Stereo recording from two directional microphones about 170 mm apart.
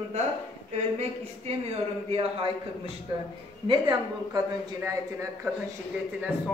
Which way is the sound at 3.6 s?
25° right (ahead or behind).